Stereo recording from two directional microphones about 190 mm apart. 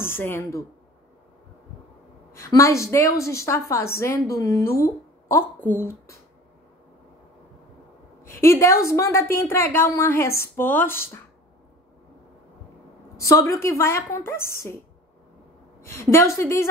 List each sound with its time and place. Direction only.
0.0 s speech: 10° left (ahead or behind)
2.3 s a woman's voice: 15° left (ahead or behind)
8.2 s a woman's voice: 15° left (ahead or behind)
13.2 s a woman's voice: 15° left (ahead or behind)
15.8 s a woman's voice: 15° left (ahead or behind)